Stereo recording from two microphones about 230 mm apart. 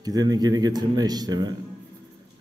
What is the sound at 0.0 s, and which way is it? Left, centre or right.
Speech, centre.